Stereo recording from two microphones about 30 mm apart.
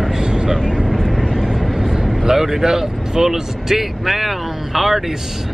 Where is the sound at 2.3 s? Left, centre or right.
Centre.